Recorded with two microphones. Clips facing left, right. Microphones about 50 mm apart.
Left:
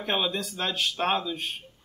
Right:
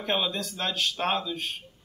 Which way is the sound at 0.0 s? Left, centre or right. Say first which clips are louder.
Even; centre.